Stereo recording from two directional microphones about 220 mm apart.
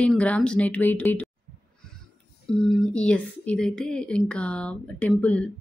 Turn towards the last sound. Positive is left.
turn(degrees=5)  # may be behind; listen again after turning